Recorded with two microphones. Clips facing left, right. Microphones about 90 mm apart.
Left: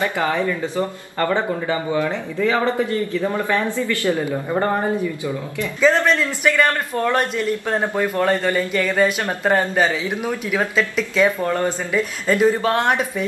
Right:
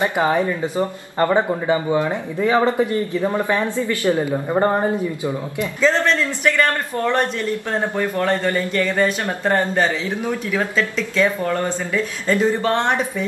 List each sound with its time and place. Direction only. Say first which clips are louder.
0.0 s speech: right 2 dB; 20° right (ahead or behind)
5.8 s speech: left 1 dB; 15° left (ahead or behind)